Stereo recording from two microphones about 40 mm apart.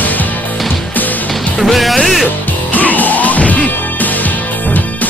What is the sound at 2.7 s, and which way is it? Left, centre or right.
Music, left.